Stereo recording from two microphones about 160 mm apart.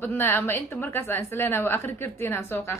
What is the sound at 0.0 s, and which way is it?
A woman's voice, 15° left (ahead or behind).